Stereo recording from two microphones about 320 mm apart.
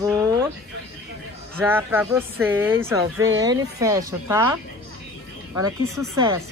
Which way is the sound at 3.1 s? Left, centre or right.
Right.